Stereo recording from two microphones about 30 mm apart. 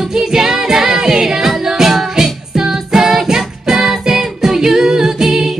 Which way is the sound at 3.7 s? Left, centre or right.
Centre.